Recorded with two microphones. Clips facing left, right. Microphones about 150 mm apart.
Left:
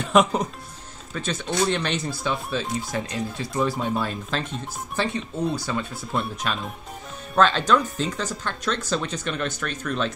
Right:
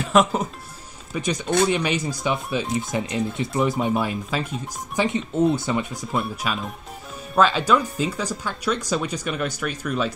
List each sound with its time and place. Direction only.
0.0 s speech: centre (ahead or behind)
1.1 s speech: 15° right (ahead or behind)
5.0 s speech: 20° right (ahead or behind)
6.1 s speech: 5° right (ahead or behind)